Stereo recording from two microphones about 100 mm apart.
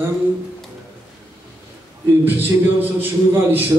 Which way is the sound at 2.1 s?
20° right (ahead or behind).